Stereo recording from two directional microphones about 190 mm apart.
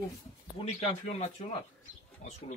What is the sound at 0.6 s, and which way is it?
Speech, 35° left (ahead or behind).